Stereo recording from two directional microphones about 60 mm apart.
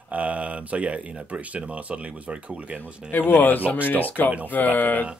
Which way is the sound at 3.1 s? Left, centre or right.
Left.